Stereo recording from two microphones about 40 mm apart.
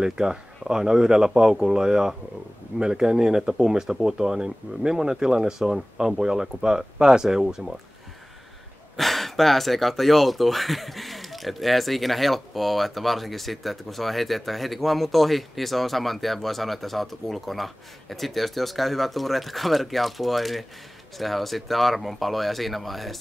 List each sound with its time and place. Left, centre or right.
0.0 s speech: centre
8.9 s speech: centre